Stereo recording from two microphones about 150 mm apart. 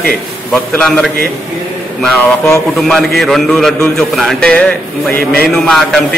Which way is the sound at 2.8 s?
Centre (ahead or behind).